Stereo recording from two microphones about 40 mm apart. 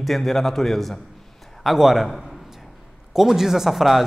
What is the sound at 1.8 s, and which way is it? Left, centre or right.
Speech, centre.